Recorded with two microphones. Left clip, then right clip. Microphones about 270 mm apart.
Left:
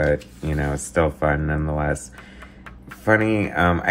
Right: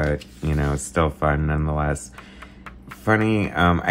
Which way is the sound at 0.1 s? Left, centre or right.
Centre.